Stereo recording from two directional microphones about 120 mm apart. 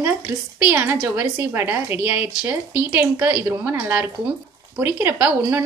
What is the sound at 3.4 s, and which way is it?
A woman's voice, 20° right (ahead or behind).